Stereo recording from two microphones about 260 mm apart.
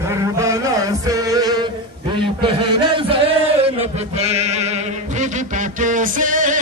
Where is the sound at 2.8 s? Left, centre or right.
Centre.